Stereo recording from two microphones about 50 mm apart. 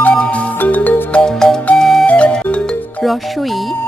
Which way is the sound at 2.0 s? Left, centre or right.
Left.